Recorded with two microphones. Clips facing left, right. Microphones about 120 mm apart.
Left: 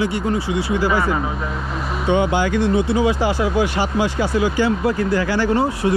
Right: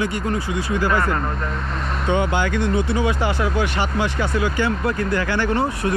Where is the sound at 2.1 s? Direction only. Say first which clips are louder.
Left 3 dB; 20° left (ahead or behind).